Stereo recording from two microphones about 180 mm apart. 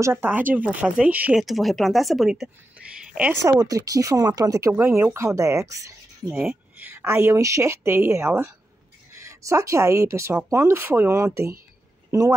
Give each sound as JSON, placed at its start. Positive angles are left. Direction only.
{"t": 0.0, "sound": "speech", "side_deg": -10}
{"t": 3.5, "sound": "speech", "side_deg": -20}